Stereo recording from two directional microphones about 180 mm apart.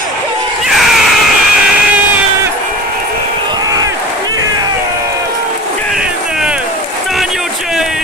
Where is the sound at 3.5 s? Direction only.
20° right (ahead or behind).